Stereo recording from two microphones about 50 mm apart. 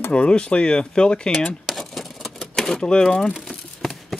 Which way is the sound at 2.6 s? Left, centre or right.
Centre.